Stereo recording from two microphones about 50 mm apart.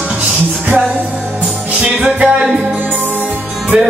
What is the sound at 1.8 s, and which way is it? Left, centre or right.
Music, right.